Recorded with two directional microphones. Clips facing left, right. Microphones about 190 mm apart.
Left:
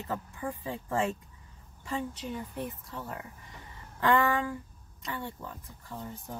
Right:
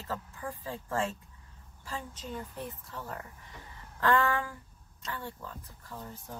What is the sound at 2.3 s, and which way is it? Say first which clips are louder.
Speech: left 3 dB; 10° left (ahead or behind).